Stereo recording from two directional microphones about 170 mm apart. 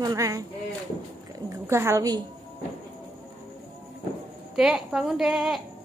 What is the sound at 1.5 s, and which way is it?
Speech, 15° right (ahead or behind).